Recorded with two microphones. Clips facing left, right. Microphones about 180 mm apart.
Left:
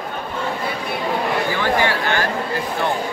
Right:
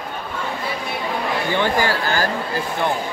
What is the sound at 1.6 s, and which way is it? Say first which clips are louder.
Speech: left 1 dB; 35° right (ahead or behind).